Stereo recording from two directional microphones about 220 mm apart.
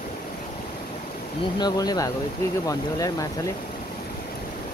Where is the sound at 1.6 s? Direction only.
15° left (ahead or behind).